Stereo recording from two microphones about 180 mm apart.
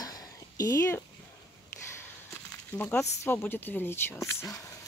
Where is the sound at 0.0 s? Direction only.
20° left (ahead or behind).